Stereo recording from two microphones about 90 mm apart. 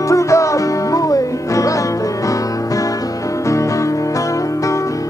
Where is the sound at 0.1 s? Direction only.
35° left (ahead or behind).